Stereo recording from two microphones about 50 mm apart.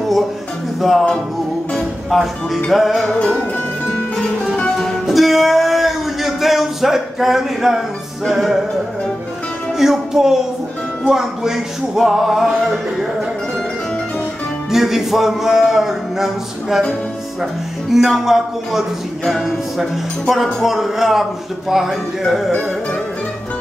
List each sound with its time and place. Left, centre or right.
0.7 s music: centre
2.0 s speech: centre
3.2 s music: left
4.7 s music: centre
8.3 s speech: centre
9.8 s music: centre
14.7 s speech: centre
17.9 s speech: centre